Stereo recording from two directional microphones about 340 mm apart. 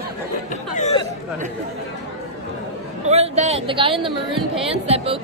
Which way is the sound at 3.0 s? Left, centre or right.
Centre.